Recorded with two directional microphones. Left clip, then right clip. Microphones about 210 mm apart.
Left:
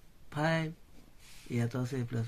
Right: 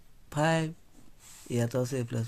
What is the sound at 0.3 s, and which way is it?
Speech, 40° right (ahead or behind).